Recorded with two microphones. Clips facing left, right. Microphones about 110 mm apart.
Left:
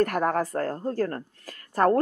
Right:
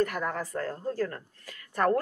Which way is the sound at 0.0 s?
50° left (ahead or behind).